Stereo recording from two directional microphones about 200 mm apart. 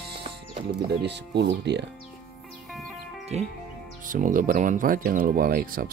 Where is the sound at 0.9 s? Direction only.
60° right (ahead or behind).